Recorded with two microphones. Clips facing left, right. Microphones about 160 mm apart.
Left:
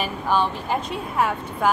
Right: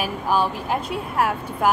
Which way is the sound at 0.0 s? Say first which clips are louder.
Right 1 dB; 5° right (ahead or behind).